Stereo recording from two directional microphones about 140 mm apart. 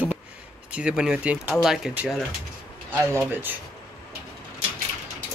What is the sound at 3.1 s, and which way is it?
Speech, 15° right (ahead or behind).